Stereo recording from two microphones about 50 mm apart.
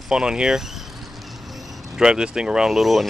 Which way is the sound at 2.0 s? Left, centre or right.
Centre.